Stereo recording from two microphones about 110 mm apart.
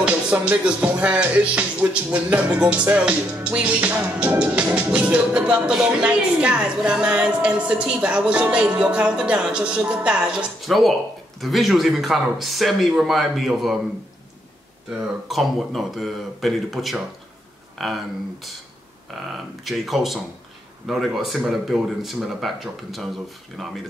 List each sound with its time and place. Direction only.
0.0 s music: 10° right (ahead or behind)
11.4 s speech: centre (ahead or behind)
14.9 s speech: 5° right (ahead or behind)
19.6 s speech: centre (ahead or behind)